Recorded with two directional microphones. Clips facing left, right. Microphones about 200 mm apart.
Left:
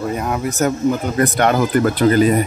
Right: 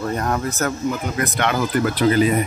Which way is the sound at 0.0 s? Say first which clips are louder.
Left 1 dB; 5° left (ahead or behind).